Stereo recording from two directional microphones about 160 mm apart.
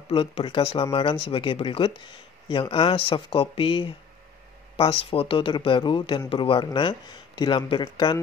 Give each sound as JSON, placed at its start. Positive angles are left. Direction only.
{"t": 0.1, "sound": "speech", "side_deg": 35}